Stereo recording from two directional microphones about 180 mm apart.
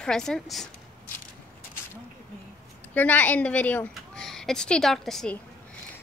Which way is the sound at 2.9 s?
10° left (ahead or behind).